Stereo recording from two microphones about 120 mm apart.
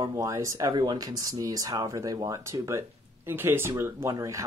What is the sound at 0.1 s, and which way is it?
Speech, 25° right (ahead or behind).